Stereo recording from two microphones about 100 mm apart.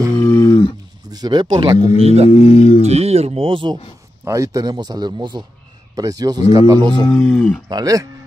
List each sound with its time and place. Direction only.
0.2 s a sound: 25° left (ahead or behind)
1.1 s a man's voice: 45° right (ahead or behind)
2.0 s speech: 90° right
2.3 s speech: 90° left
2.8 s speech: 90° right; by 3.7 s 60° right (ahead or behind)
4.2 s a man's voice: 30° right (ahead or behind); by 7.1 s 50° right (ahead or behind)
7.2 s speech: 15° left (ahead or behind)
7.7 s speech: 35° right (ahead or behind)